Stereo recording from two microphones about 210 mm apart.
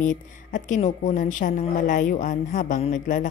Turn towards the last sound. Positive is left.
turn(degrees=35)  # may be behind; listen again after turning